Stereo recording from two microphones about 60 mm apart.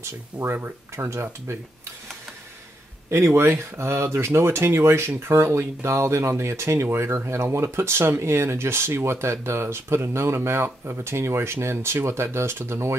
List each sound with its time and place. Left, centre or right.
0.6 s speech: right
3.1 s speech: right